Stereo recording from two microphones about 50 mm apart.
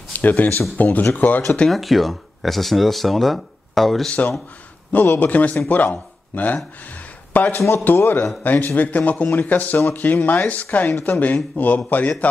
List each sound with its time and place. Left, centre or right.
0.2 s a man's voice: left
1.7 s speech: centre
4.9 s a man's voice: left